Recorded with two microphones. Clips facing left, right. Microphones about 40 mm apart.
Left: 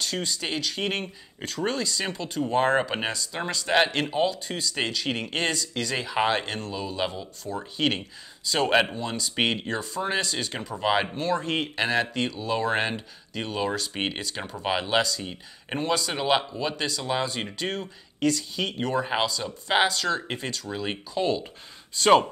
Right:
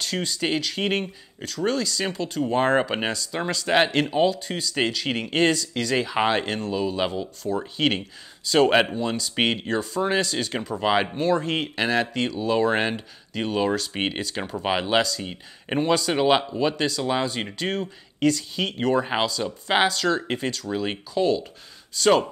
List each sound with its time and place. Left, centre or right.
0.0 s speech: centre
1.4 s speech: left
1.7 s speech: centre
21.2 s speech: centre